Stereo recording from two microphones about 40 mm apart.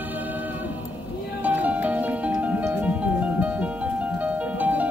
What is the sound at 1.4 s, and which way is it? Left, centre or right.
Music, right.